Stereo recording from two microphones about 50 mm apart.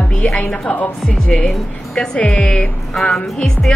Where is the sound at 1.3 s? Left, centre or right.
Centre.